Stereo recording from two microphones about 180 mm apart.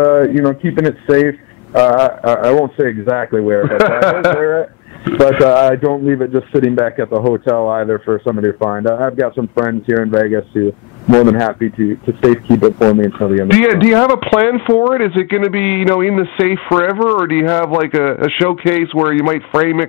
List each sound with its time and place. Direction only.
0.0 s a man's voice: 20° left (ahead or behind)
13.2 s a man's voice: 15° left (ahead or behind)